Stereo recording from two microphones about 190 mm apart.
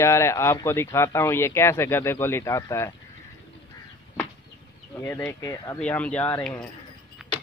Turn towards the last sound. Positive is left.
turn(degrees=-5)  # may be behind; listen again after turning